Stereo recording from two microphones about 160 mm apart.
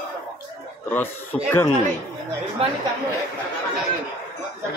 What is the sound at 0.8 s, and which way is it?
Speech, 10° left (ahead or behind).